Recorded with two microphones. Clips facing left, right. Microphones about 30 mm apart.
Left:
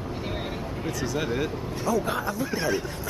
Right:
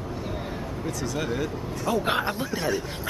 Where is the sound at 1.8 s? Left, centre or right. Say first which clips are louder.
Right 2 dB; right.